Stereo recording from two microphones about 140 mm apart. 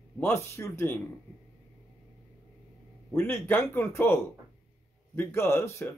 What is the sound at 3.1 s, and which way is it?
Speech, 15° left (ahead or behind).